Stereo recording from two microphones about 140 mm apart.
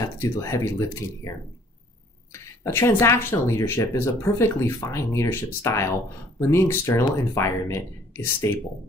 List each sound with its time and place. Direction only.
0.0 s speech: 20° left (ahead or behind)
2.4 s speech: 15° left (ahead or behind)